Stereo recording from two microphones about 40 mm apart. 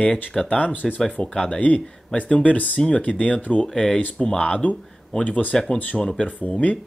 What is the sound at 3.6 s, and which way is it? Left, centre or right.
Speech, centre.